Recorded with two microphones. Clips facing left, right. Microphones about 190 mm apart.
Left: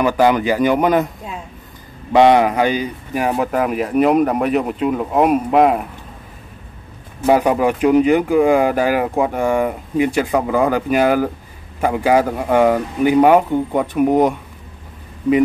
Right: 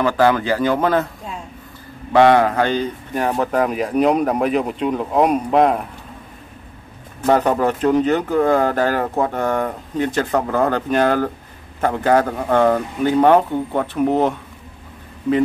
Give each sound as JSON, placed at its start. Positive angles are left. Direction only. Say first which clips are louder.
{"t": 0.0, "sound": "speech", "louder": "left 2 dB", "side_deg": 15}
{"t": 2.1, "sound": "speech", "louder": "left 1 dB", "side_deg": 15}
{"t": 7.2, "sound": "speech", "louder": "left 2 dB", "side_deg": 10}